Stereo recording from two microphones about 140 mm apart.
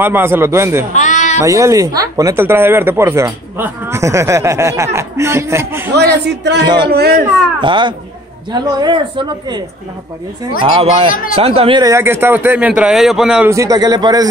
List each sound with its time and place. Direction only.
0.0 s a man's voice: 15° right (ahead or behind)
0.9 s a sound: 60° left (ahead or behind)
1.4 s speech: 20° right (ahead or behind)
6.6 s speech: 30° right (ahead or behind)
6.9 s speech: 90° right
7.6 s speech: 35° right (ahead or behind)
10.6 s speech: 35° right (ahead or behind)
11.8 s a man's voice: 20° right (ahead or behind)
13.5 s speech: 25° right (ahead or behind)